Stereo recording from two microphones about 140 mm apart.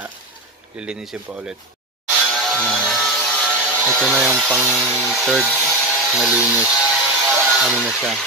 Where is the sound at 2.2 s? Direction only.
Centre (ahead or behind).